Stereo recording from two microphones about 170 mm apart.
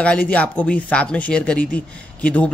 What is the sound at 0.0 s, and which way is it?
A man's voice, 10° left (ahead or behind).